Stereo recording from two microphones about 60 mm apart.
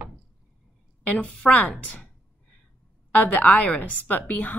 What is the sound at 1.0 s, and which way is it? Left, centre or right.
Speech, left.